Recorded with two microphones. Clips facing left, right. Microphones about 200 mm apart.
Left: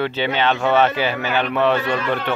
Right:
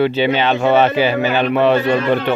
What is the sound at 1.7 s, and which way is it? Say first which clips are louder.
Speech: right 6 dB; 30° right (ahead or behind).